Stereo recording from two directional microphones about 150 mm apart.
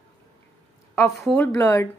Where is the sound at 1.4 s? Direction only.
15° left (ahead or behind).